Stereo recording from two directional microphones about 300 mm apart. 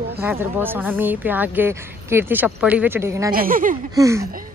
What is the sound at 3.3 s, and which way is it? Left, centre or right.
Speech, right.